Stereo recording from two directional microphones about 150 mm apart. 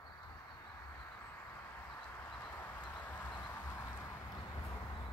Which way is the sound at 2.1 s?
10° left (ahead or behind).